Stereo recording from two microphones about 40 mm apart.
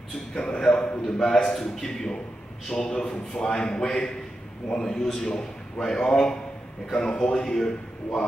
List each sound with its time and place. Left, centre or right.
0.3 s a man's voice: centre